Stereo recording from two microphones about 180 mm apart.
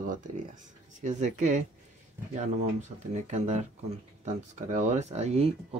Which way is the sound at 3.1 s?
40° right (ahead or behind).